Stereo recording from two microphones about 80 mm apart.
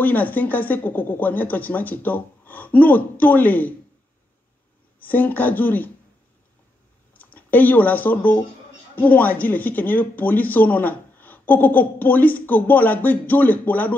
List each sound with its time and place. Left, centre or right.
0.0 s speech: left
5.0 s speech: left
7.2 s speech: left